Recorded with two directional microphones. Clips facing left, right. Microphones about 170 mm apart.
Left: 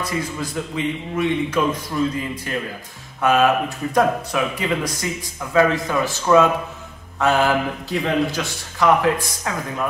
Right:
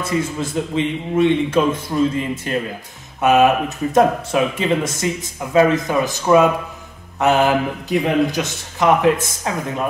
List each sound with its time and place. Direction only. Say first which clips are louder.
0.0 s speech: right 4 dB; 25° right (ahead or behind)